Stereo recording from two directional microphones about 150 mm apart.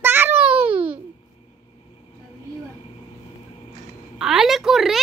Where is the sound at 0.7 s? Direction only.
35° right (ahead or behind).